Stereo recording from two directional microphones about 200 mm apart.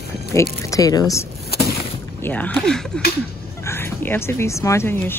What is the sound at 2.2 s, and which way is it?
Speech, 10° left (ahead or behind).